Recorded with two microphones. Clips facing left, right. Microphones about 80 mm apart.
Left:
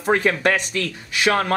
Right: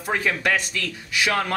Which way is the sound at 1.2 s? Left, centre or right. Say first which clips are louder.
Left 4 dB; left.